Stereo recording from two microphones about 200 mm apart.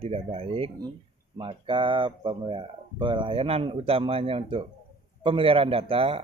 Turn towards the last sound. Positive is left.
turn(degrees=-30)  # may be behind; listen again after turning